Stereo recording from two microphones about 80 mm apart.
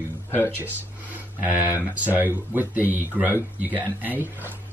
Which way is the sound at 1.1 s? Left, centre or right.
Right.